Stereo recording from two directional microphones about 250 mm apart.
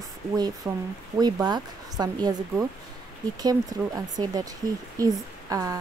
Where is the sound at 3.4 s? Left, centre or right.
Centre.